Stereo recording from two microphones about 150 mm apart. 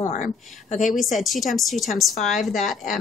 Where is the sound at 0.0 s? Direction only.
55° left (ahead or behind).